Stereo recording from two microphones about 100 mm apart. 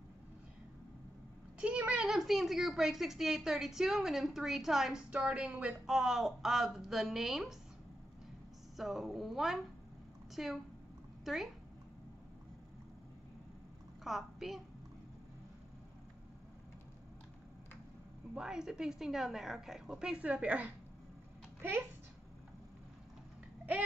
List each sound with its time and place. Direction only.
1.6 s a woman's voice: 10° right (ahead or behind)
8.7 s a woman's voice: centre (ahead or behind)
14.0 s a child's voice: centre (ahead or behind)
18.3 s a woman's voice: 5° right (ahead or behind); by 21.8 s 25° right (ahead or behind)